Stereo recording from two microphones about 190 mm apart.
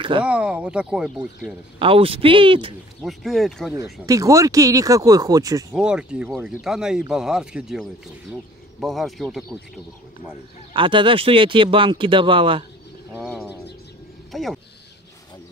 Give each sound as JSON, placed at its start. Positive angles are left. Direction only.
{"t": 0.2, "sound": "speech", "side_deg": -5}
{"t": 1.8, "sound": "speech", "side_deg": -30}
{"t": 3.0, "sound": "speech", "side_deg": 0}
{"t": 3.7, "sound": "speech", "side_deg": -15}
{"t": 5.8, "sound": "speech", "side_deg": -5}
{"t": 10.7, "sound": "speech", "side_deg": -25}
{"t": 14.3, "sound": "speech", "side_deg": 0}